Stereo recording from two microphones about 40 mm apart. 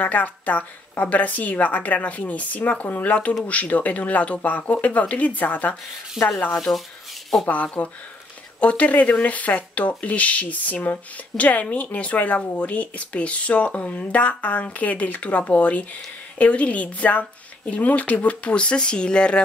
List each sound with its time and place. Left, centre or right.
0.0 s speech: left
6.2 s speech: centre
6.7 s speech: left
7.6 s speech: left